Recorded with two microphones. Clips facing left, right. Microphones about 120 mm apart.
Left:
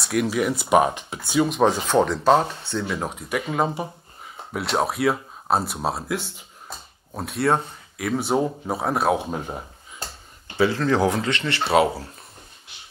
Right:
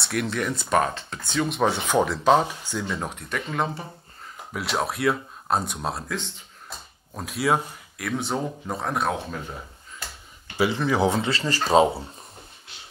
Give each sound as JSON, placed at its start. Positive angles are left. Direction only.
{"t": 0.0, "sound": "speech", "side_deg": 5}
{"t": 2.4, "sound": "speech", "side_deg": -10}
{"t": 2.8, "sound": "speech", "side_deg": 5}
{"t": 4.6, "sound": "speech", "side_deg": 0}
{"t": 9.3, "sound": "a sound", "side_deg": 40}
{"t": 10.6, "sound": "speech", "side_deg": -10}
{"t": 11.7, "sound": "speech", "side_deg": 10}